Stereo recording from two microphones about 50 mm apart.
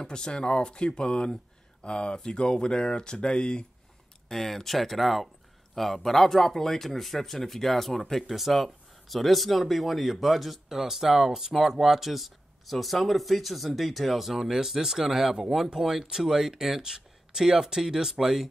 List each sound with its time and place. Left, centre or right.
0.0 s speech: centre
4.3 s speech: centre